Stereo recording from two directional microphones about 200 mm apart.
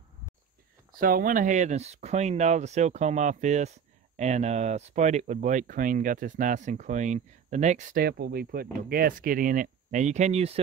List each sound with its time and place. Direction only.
0.9 s speech: 45° right (ahead or behind)